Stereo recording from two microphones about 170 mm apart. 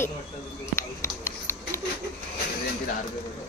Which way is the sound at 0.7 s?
15° left (ahead or behind).